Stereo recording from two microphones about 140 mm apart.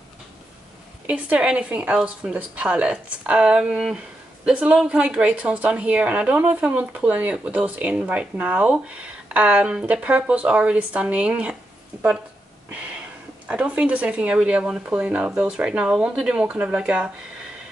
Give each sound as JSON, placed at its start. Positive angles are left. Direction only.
{"t": 1.0, "sound": "a woman's voice", "side_deg": -10}
{"t": 11.9, "sound": "a sound", "side_deg": -15}
{"t": 13.5, "sound": "a woman's voice", "side_deg": -10}